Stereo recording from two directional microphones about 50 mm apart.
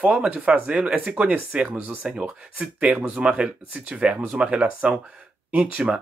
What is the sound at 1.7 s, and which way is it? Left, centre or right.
Speech, right.